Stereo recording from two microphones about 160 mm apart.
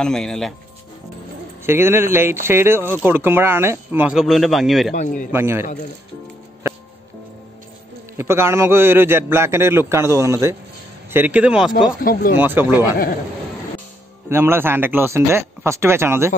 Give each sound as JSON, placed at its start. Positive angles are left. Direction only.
{"t": 0.0, "sound": "speech", "side_deg": 5}
{"t": 1.7, "sound": "speech", "side_deg": -15}
{"t": 4.9, "sound": "speech", "side_deg": 50}
{"t": 5.3, "sound": "speech", "side_deg": -15}
{"t": 8.2, "sound": "speech", "side_deg": -15}
{"t": 12.0, "sound": "speech", "side_deg": 65}
{"t": 12.4, "sound": "speech", "side_deg": -15}
{"t": 14.3, "sound": "speech", "side_deg": -15}